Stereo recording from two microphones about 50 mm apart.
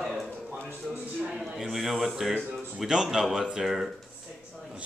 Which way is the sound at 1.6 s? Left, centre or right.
Centre.